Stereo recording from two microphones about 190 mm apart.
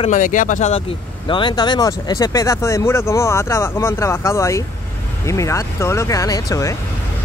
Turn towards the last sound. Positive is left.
turn(degrees=15)  # may be behind; listen again after turning